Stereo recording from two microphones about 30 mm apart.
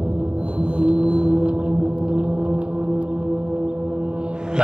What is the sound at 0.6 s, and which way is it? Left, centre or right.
Music, right.